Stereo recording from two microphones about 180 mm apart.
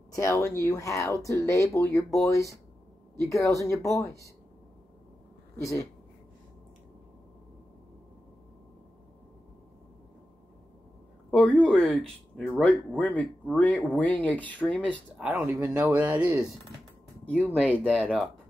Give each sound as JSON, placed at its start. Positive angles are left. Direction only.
{"t": 0.1, "sound": "speech", "side_deg": 15}
{"t": 3.2, "sound": "speech", "side_deg": 15}
{"t": 5.6, "sound": "speech", "side_deg": 15}
{"t": 11.2, "sound": "a sound", "side_deg": 5}
{"t": 12.4, "sound": "speech", "side_deg": 5}
{"t": 15.1, "sound": "speech", "side_deg": -5}
{"t": 17.6, "sound": "speech", "side_deg": 5}